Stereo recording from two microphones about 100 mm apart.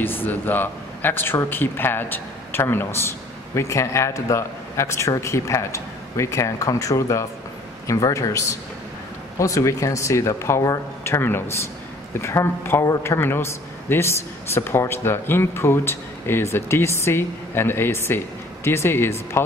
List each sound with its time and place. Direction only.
0.0 s a man's voice: 20° left (ahead or behind)